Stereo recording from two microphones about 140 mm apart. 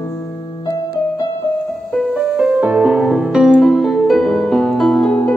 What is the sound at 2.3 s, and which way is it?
Music, 10° right (ahead or behind).